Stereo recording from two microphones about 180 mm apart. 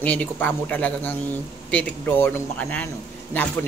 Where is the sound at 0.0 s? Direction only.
10° left (ahead or behind).